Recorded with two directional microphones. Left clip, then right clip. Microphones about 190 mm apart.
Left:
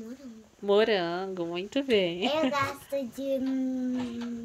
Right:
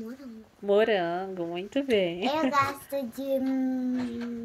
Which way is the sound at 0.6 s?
15° left (ahead or behind).